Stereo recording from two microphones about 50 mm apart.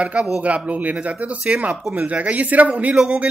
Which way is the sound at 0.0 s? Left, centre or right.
Right.